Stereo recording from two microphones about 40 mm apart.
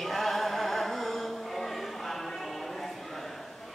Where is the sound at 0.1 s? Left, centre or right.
Centre.